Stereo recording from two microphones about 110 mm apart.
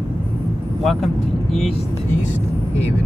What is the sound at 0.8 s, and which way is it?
Speech, centre (ahead or behind).